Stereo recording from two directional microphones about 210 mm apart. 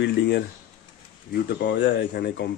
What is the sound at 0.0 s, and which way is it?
Speech, 55° left (ahead or behind).